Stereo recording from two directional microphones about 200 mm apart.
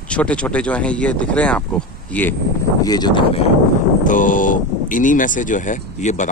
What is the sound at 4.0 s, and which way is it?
Speech, 40° left (ahead or behind).